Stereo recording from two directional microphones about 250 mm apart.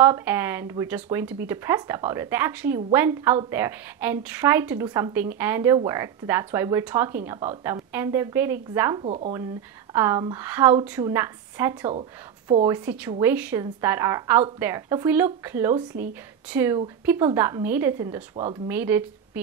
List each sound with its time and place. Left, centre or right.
0.0 s speech: centre
9.0 s speech: right
9.9 s speech: centre
11.9 s speech: right
12.6 s speech: centre
18.3 s speech: right
18.7 s speech: centre